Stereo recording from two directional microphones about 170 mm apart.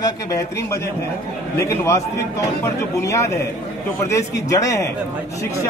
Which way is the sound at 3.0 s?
20° left (ahead or behind).